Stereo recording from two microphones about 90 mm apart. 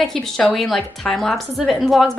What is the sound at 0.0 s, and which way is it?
A woman's voice, 5° left (ahead or behind).